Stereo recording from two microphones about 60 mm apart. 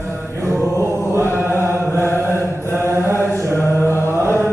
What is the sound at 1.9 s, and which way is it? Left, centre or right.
Mantra, left.